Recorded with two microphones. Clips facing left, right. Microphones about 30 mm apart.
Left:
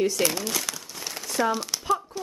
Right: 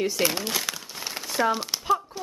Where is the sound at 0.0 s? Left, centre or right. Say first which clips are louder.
Left 1 dB; centre.